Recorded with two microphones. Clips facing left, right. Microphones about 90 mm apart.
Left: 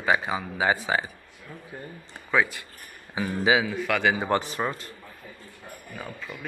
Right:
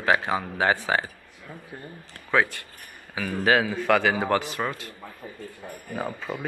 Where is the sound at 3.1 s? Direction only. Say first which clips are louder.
Left 1 dB; 20° left (ahead or behind).